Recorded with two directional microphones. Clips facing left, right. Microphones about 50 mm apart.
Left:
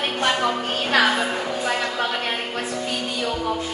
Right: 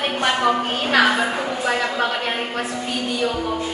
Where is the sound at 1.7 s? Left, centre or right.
Centre.